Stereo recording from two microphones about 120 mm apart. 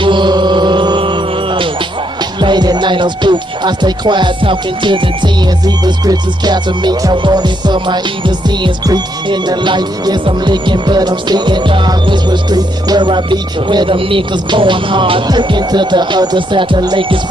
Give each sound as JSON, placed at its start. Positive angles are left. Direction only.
{"t": 0.0, "sound": "music", "side_deg": -40}